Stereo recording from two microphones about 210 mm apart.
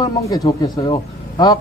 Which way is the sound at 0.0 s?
15° left (ahead or behind).